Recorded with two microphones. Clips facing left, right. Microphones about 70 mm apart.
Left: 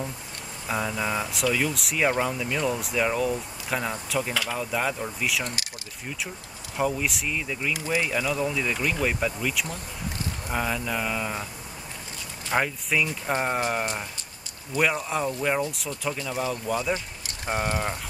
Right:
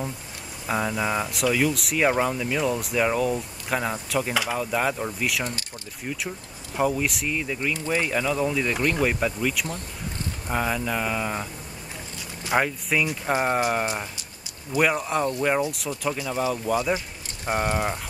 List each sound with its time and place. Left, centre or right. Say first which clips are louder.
0.7 s speech: right 2 dB; centre
6.8 s speech: right 2 dB; centre
7.7 s speech: even; centre
8.1 s speech: right 2 dB; centre
12.4 s speech: right 2 dB; centre